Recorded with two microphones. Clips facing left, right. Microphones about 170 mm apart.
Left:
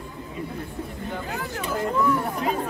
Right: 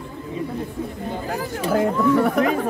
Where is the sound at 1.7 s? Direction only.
85° right.